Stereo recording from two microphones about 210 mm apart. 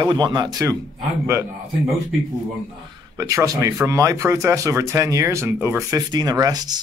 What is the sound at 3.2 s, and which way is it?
Speech, 15° right (ahead or behind).